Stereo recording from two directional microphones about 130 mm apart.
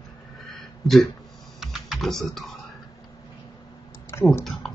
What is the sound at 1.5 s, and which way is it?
Typing, centre (ahead or behind).